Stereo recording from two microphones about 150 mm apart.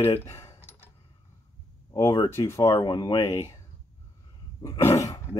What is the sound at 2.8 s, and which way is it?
Speech, 30° left (ahead or behind).